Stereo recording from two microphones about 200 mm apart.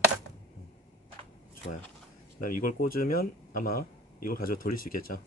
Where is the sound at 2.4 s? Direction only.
45° left (ahead or behind).